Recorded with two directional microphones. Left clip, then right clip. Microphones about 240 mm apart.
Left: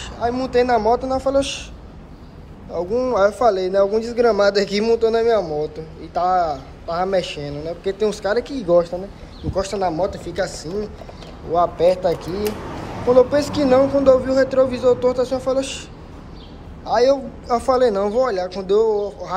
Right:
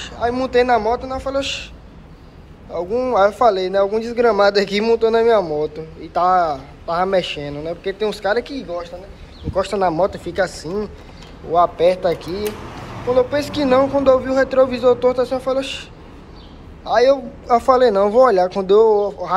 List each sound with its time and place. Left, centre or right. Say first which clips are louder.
0.0 s speech: right 2 dB; centre
2.7 s speech: right 1 dB; centre
8.6 s speech: left 11 dB; left
9.5 s speech: right 3 dB; centre
16.8 s speech: right 2 dB; centre